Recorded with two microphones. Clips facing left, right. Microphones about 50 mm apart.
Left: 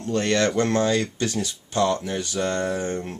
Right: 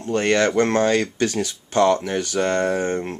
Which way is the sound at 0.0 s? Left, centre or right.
Right.